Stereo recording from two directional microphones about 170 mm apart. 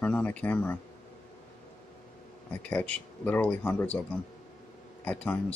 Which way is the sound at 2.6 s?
10° left (ahead or behind).